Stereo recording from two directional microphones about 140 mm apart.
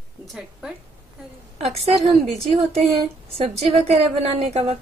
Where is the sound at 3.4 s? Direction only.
45° right (ahead or behind).